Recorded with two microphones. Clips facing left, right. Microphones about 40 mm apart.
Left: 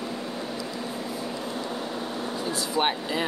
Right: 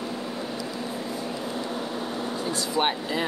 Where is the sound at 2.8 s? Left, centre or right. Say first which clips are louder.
Even; centre.